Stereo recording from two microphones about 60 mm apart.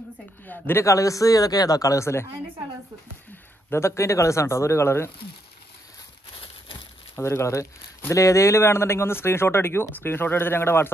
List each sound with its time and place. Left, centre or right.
0.5 s a man's voice: left
0.8 s speech: left
3.7 s speech: left
7.2 s a man's voice: left